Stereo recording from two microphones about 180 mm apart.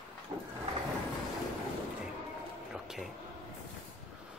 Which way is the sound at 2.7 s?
Centre (ahead or behind).